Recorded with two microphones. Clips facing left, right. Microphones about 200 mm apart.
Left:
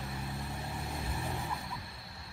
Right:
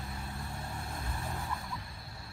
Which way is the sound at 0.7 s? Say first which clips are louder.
Left 2 dB; 10° left (ahead or behind).